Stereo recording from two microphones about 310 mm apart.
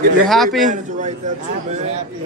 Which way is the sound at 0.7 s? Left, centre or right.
Right.